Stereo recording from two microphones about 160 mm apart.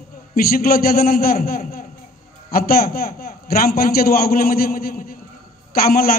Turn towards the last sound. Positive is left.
turn(degrees=70)  # may be behind; listen again after turning